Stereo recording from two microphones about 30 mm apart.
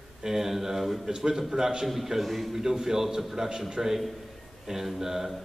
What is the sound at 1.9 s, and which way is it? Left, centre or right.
Speech, centre.